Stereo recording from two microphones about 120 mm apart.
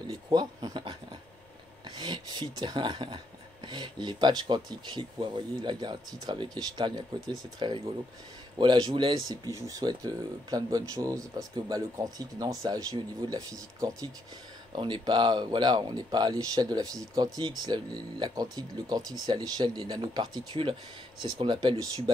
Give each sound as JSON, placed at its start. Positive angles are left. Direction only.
{"t": 0.1, "sound": "speech", "side_deg": -35}
{"t": 14.8, "sound": "speech", "side_deg": -40}